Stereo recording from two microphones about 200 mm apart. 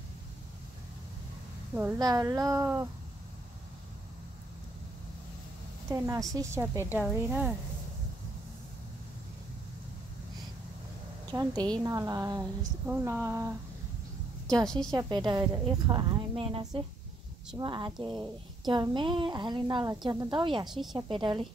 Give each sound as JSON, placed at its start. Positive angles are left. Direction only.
{"t": 1.8, "sound": "speech", "side_deg": -15}
{"t": 5.9, "sound": "speech", "side_deg": -15}
{"t": 11.2, "sound": "a woman's voice", "side_deg": -20}
{"t": 14.9, "sound": "a woman's voice", "side_deg": -20}
{"t": 20.6, "sound": "a woman's voice", "side_deg": 0}
{"t": 20.9, "sound": "a woman's voice", "side_deg": -25}